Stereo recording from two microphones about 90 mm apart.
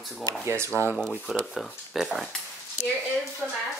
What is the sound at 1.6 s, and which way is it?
Speech, 5° right (ahead or behind).